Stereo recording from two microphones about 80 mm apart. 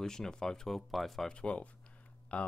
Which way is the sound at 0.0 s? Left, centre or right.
Centre.